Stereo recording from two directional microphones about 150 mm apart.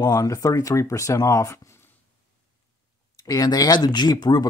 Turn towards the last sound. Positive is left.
turn(degrees=25)  # may be behind; listen again after turning